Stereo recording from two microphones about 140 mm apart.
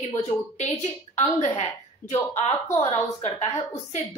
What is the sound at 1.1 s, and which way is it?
A woman's voice, 60° left (ahead or behind).